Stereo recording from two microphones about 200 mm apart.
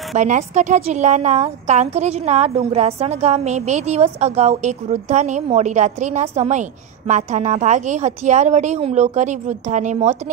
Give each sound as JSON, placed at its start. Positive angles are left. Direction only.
{"t": 0.1, "sound": "a woman's voice", "side_deg": -35}